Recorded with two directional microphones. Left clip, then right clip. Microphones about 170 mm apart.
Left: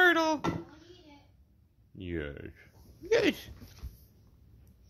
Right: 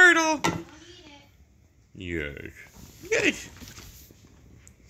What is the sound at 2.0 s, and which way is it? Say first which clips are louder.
Speech: right 5 dB; 5° left (ahead or behind).